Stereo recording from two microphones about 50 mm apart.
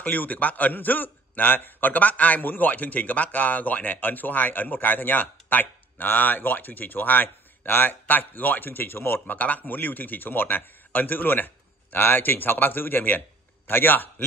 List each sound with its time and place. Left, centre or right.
0.0 s a man's voice: left
9.4 s a man's voice: left